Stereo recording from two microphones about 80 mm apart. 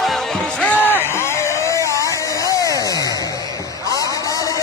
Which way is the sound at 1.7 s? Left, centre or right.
Left.